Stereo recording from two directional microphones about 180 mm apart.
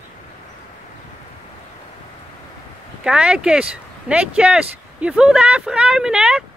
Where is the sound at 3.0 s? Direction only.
5° right (ahead or behind).